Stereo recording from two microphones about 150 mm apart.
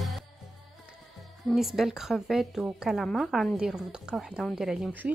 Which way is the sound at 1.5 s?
Centre (ahead or behind).